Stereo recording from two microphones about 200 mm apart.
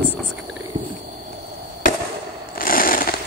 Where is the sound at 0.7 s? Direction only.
40° right (ahead or behind).